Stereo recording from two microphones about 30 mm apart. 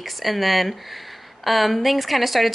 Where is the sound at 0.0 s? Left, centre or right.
Centre.